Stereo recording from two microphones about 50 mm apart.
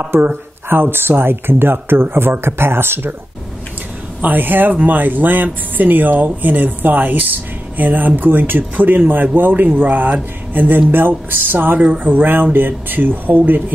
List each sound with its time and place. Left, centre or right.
0.2 s speech: right
4.2 s speech: right